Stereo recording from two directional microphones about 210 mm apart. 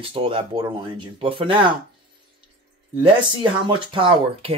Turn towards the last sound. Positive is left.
turn(degrees=-25)  # may be behind; listen again after turning